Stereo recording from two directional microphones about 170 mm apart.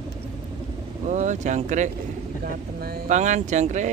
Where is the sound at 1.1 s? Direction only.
45° right (ahead or behind).